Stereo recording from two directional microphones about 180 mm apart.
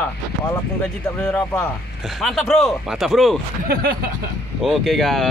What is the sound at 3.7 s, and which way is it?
Speech, 55° right (ahead or behind).